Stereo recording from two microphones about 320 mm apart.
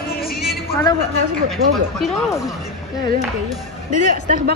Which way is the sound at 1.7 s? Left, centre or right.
Centre.